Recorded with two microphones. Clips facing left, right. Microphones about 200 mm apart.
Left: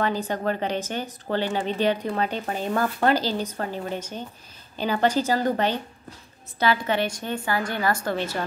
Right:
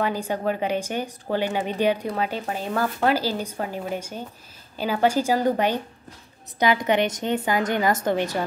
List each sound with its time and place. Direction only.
0.0 s speech: 10° right (ahead or behind)